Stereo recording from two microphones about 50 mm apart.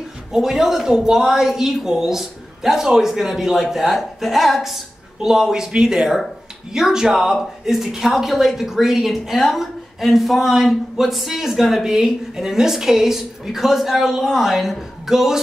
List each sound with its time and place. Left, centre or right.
0.3 s speech: centre